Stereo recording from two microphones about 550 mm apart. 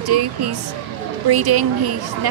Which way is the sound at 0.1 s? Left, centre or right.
Right.